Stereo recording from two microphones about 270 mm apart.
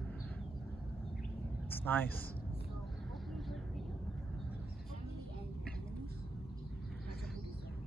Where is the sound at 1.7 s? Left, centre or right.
Centre.